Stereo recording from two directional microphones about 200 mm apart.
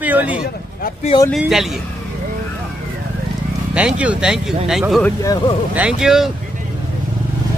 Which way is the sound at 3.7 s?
5° right (ahead or behind).